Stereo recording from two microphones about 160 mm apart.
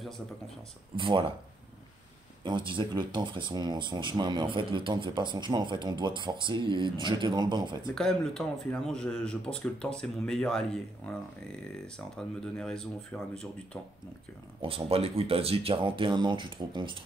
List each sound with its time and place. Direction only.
0.9 s speech: 30° right (ahead or behind)
2.4 s speech: 30° right (ahead or behind)
7.9 s speech: 5° left (ahead or behind)
12.2 s speech: 5° left (ahead or behind)
14.6 s speech: 35° right (ahead or behind)